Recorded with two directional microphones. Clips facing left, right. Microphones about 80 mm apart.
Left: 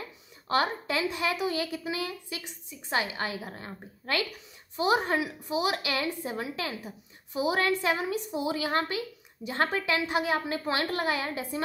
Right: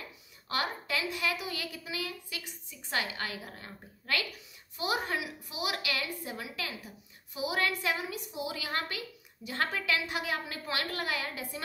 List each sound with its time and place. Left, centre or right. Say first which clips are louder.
0.5 s a woman's voice: left 6 dB; left